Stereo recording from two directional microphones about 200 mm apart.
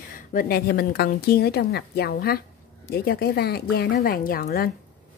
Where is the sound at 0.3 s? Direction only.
45° left (ahead or behind).